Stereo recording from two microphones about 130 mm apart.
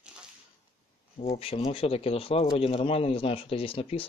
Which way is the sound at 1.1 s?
50° left (ahead or behind).